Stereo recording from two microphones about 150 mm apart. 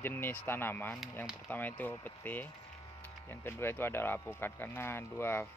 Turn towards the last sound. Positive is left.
turn(degrees=15)  # may be behind; listen again after turning